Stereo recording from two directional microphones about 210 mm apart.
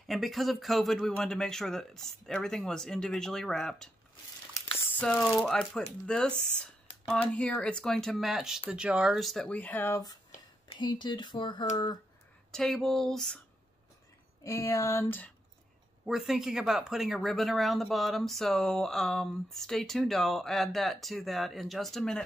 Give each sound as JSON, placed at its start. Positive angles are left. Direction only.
{"t": 0.0, "sound": "speech", "side_deg": 0}
{"t": 4.6, "sound": "speech", "side_deg": 15}
{"t": 12.4, "sound": "speech", "side_deg": 0}
{"t": 14.4, "sound": "a sound", "side_deg": 15}
{"t": 16.1, "sound": "speech", "side_deg": 0}